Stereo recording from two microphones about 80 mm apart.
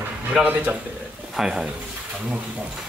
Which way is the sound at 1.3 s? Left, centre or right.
Centre.